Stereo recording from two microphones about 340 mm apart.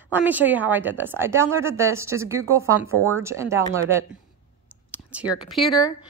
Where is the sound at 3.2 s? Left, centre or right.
Centre.